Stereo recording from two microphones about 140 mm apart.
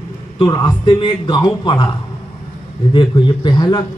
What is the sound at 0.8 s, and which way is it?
A man's voice, 35° left (ahead or behind).